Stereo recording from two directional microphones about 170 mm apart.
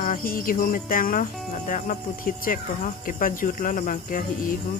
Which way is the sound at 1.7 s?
55° left (ahead or behind).